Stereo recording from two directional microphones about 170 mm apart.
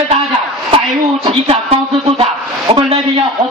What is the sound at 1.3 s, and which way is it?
A man's voice, 35° right (ahead or behind).